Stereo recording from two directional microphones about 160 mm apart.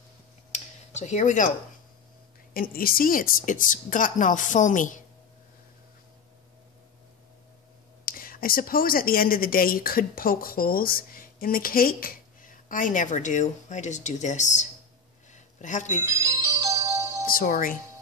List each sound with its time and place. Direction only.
0.5 s a sound: 45° left (ahead or behind)
2.5 s a woman's voice: 65° left (ahead or behind)
8.0 s a woman's voice: 65° left (ahead or behind)
15.3 s a sound: 50° left (ahead or behind)
16.1 s music: 20° right (ahead or behind)
17.3 s a woman's voice: 60° left (ahead or behind)